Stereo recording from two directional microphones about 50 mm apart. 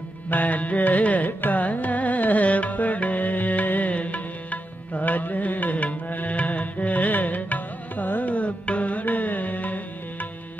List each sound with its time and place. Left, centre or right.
0.3 s music: left